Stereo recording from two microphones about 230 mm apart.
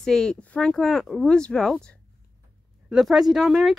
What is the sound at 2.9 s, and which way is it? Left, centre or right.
Speech, centre.